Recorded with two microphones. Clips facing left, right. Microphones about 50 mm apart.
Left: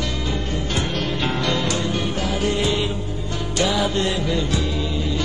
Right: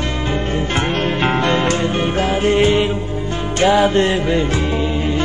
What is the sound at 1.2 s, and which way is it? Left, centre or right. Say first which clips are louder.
Music: right 7 dB; right.